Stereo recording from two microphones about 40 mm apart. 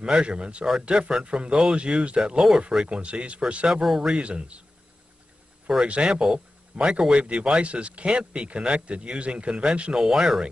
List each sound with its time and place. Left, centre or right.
0.0 s speech: right
0.9 s speech: centre
3.8 s speech: centre
4.1 s speech: right
5.9 s speech: right
6.2 s a man's voice: centre
9.9 s speech: centre